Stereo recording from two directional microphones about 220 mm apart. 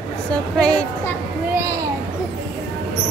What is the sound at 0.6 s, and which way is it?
Speech, 5° left (ahead or behind).